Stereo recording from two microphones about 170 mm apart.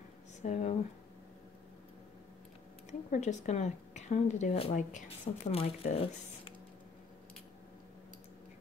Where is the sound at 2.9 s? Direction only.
45° left (ahead or behind).